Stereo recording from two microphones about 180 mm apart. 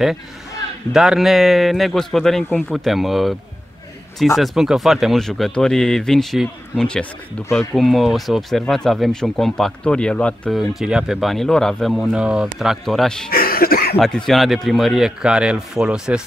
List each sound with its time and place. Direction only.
0.9 s speech: centre (ahead or behind)
4.4 s speech: centre (ahead or behind)
13.3 s a sound: 55° left (ahead or behind)
13.9 s speech: centre (ahead or behind)